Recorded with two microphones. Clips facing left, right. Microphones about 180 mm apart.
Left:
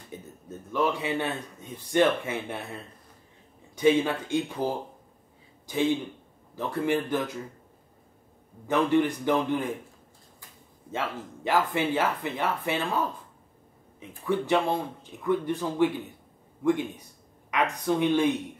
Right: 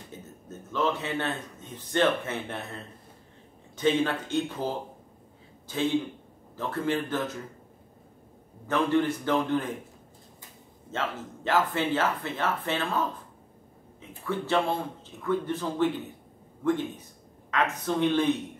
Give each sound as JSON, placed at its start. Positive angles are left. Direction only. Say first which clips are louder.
{"t": 0.1, "sound": "a sound", "louder": "left 4 dB", "side_deg": 15}
{"t": 0.7, "sound": "speech", "louder": "left 2 dB", "side_deg": 15}
{"t": 5.7, "sound": "speech", "louder": "left 1 dB", "side_deg": 15}
{"t": 8.6, "sound": "speech", "louder": "left 2 dB", "side_deg": 15}
{"t": 10.9, "sound": "speech", "louder": "even", "side_deg": 10}
{"t": 14.2, "sound": "speech", "louder": "left 2 dB", "side_deg": 15}